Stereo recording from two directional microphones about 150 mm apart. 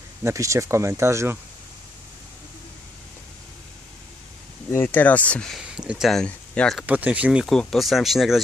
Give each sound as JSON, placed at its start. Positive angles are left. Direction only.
{"t": 0.2, "sound": "speech", "side_deg": -20}
{"t": 4.6, "sound": "speech", "side_deg": 15}
{"t": 6.9, "sound": "speech", "side_deg": -10}
{"t": 7.4, "sound": "speech", "side_deg": 0}